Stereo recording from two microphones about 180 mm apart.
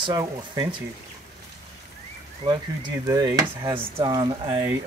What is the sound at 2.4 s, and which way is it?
Speech, 40° right (ahead or behind).